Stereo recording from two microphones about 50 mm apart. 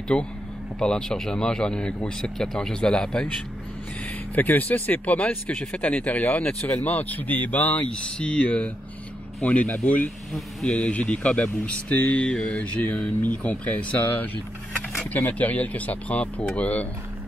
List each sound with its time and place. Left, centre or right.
0.1 s speech: left
0.7 s speech: centre
4.4 s speech: left
7.9 s speech: left
10.3 s speech: centre
10.9 s speech: left